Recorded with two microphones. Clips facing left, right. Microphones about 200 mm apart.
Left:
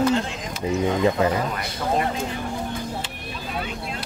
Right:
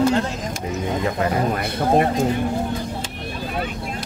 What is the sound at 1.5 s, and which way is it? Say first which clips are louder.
Speech: right 6 dB; 50° right (ahead or behind).